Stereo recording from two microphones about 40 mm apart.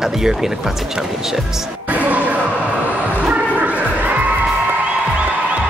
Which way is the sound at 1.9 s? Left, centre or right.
Right.